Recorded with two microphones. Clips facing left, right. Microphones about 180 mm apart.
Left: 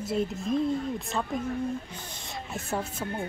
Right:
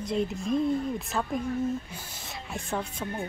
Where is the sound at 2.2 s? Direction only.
5° left (ahead or behind).